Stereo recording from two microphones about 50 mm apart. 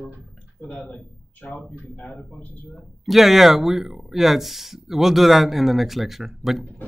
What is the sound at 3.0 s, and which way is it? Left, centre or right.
Speech, centre.